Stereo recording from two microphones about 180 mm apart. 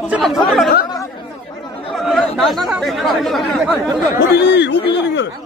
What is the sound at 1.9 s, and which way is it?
Speech, centre (ahead or behind).